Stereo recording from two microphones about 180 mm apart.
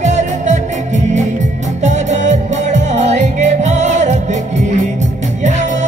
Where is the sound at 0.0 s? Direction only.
40° right (ahead or behind).